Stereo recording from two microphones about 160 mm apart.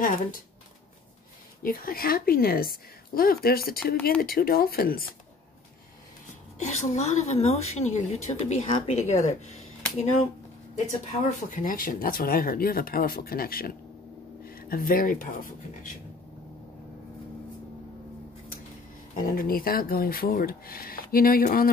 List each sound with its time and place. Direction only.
0.0 s speech: 60° left (ahead or behind)
1.6 s a woman's voice: 65° left (ahead or behind)
6.6 s a woman's voice: 45° left (ahead or behind)
10.9 s speech: 55° left (ahead or behind)
19.1 s speech: 65° left (ahead or behind)